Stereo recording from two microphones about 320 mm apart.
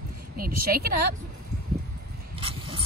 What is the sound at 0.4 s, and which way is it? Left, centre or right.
Speech, right.